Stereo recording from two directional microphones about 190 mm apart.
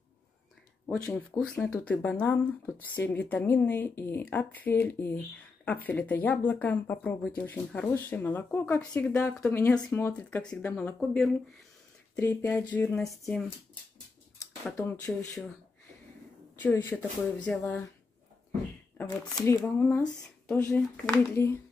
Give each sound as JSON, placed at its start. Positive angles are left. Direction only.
{"t": 0.8, "sound": "speech", "side_deg": 10}
{"t": 14.8, "sound": "speech", "side_deg": 10}
{"t": 16.6, "sound": "speech", "side_deg": 10}
{"t": 19.2, "sound": "speech", "side_deg": 20}
{"t": 19.6, "sound": "speech", "side_deg": 10}